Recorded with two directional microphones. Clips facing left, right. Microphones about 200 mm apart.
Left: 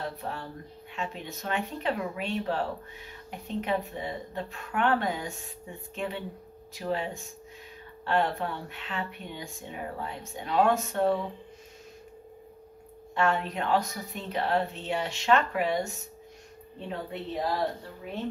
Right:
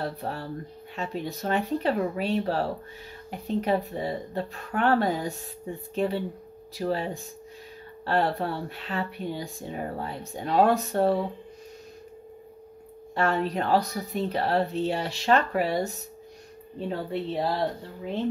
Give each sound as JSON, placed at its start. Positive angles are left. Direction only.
{"t": 0.0, "sound": "speech", "side_deg": -35}
{"t": 13.1, "sound": "speech", "side_deg": -35}
{"t": 17.1, "sound": "speech", "side_deg": -30}